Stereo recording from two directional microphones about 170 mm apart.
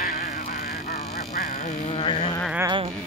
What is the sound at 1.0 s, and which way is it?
Goose, 50° left (ahead or behind).